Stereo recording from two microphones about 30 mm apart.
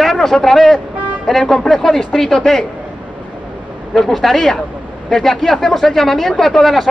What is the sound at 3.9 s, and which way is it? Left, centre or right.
Speech, centre.